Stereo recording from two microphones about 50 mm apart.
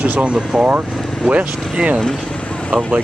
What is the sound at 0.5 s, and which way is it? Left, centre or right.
Speech, centre.